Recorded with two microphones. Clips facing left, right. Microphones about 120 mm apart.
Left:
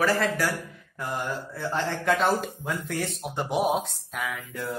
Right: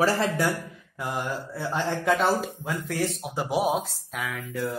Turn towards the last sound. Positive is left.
turn(degrees=0)  # may be behind; listen again after turning